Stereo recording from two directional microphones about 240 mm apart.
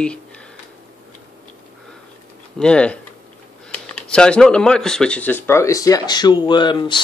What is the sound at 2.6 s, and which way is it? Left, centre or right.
Speech, centre.